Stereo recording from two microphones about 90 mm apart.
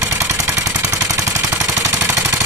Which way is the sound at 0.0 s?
30° right (ahead or behind).